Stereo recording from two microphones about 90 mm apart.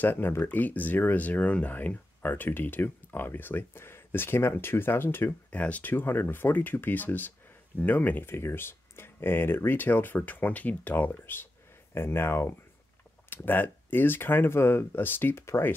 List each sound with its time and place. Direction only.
0.0 s speech: 25° left (ahead or behind)